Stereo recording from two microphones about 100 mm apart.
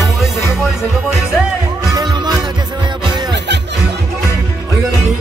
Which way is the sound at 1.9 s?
45° right (ahead or behind).